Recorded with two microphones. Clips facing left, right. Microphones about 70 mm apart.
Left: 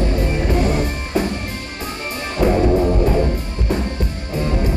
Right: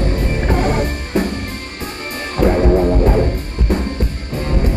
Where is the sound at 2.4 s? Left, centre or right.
Right.